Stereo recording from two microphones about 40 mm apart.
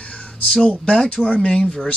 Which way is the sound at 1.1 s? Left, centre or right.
Left.